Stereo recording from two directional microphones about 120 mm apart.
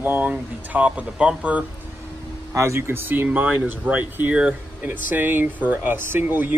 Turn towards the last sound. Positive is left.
turn(degrees=-15)  # may be behind; listen again after turning